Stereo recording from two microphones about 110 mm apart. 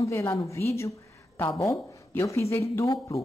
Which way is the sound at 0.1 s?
25° left (ahead or behind).